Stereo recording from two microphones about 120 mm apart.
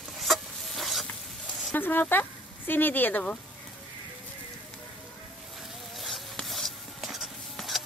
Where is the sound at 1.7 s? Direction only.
15° left (ahead or behind).